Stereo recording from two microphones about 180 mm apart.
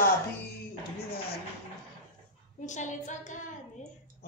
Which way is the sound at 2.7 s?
40° left (ahead or behind).